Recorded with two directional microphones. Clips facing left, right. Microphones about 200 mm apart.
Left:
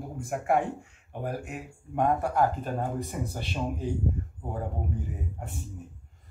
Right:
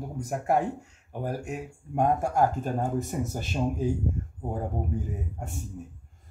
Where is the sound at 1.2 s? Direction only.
45° right (ahead or behind).